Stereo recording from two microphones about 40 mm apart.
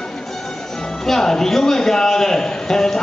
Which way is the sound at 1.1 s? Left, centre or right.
Centre.